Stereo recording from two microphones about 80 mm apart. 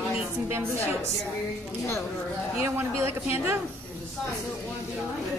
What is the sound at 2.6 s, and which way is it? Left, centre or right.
Speech, right.